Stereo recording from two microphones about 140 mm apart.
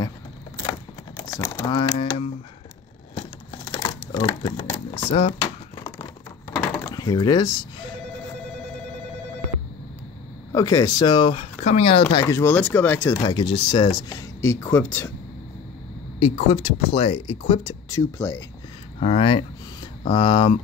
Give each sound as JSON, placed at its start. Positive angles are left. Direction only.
{"t": 0.6, "sound": "typing", "side_deg": 30}
{"t": 3.6, "sound": "crumpling", "side_deg": 30}
{"t": 4.9, "sound": "speech", "side_deg": 40}
{"t": 6.9, "sound": "speech", "side_deg": 25}
{"t": 10.5, "sound": "speech", "side_deg": 25}
{"t": 12.3, "sound": "speech", "side_deg": 20}
{"t": 13.2, "sound": "speech", "side_deg": 35}
{"t": 16.2, "sound": "speech", "side_deg": 45}
{"t": 17.8, "sound": "speech", "side_deg": 20}
{"t": 18.9, "sound": "speech", "side_deg": 45}